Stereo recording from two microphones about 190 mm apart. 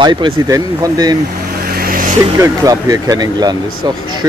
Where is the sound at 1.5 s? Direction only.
50° right (ahead or behind).